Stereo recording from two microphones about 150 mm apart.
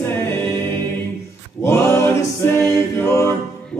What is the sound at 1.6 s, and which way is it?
Music, 20° left (ahead or behind).